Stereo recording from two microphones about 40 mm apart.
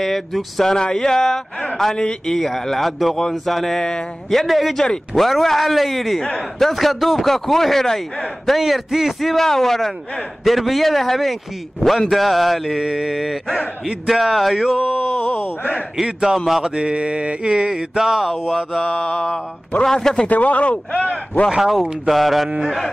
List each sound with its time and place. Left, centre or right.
0.0 s speech: centre
0.7 s speech: centre
2.3 s speech: centre
4.7 s speech: centre
8.5 s speech: centre
14.6 s mantra: centre
16.3 s speech: centre
16.7 s mantra: right; by 18.6 s centre
18.9 s a man's voice: left
19.1 s speech: centre
20.2 s a man's voice: left
21.5 s mantra: centre
22.1 s speech: centre